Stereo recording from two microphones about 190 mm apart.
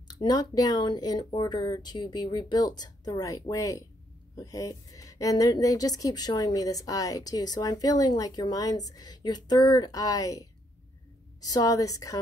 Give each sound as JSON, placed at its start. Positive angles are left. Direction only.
{"t": 0.1, "sound": "a woman's voice", "side_deg": 20}